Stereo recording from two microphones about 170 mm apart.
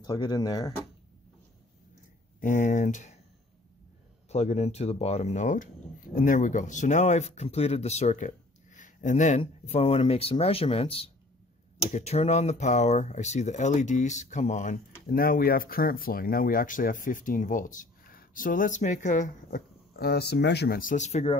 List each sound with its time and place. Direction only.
0.0 s speech: 25° left (ahead or behind)
2.4 s speech: 50° left (ahead or behind)
4.3 s speech: 40° left (ahead or behind)
20.0 s speech: 70° left (ahead or behind); by 21.4 s 40° left (ahead or behind)